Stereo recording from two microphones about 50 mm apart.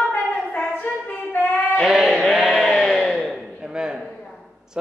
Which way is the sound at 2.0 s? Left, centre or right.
Centre.